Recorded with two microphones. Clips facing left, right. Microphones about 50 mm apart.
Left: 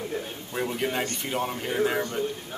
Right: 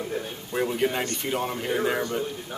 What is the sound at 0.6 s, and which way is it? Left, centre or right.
A man's voice, centre.